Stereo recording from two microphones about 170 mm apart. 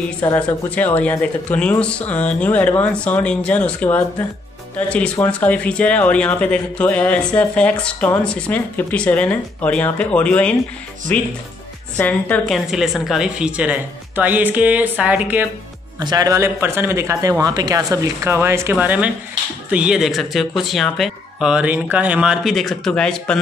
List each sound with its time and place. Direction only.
0.2 s a woman's voice: 20° left (ahead or behind); by 15.4 s 10° right (ahead or behind)
16.0 s a woman's voice: 25° right (ahead or behind); by 23.4 s 5° left (ahead or behind)